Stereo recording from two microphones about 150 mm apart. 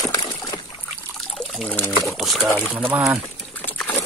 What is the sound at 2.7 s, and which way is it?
Speech, 10° right (ahead or behind).